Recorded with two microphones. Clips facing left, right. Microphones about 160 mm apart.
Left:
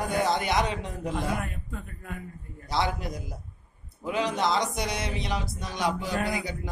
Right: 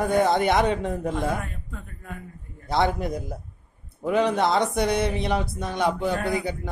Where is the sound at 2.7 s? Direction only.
55° right (ahead or behind).